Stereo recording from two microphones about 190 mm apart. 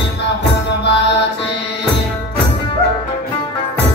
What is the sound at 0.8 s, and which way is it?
Mantra, 65° left (ahead or behind).